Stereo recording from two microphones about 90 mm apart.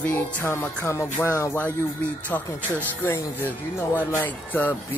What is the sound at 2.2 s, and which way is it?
Speech, 20° left (ahead or behind).